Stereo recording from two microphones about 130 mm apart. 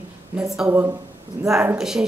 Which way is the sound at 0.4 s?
5° right (ahead or behind).